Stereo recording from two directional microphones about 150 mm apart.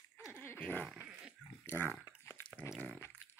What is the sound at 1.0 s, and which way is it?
Dog, 10° right (ahead or behind).